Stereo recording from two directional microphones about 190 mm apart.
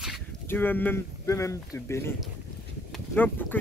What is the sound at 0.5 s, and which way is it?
Speech, 10° left (ahead or behind).